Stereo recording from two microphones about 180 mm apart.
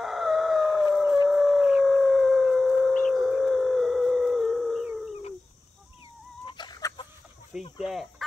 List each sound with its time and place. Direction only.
0.0 s howl: centre (ahead or behind)
6.4 s chicken: 25° left (ahead or behind)
7.7 s speech: centre (ahead or behind)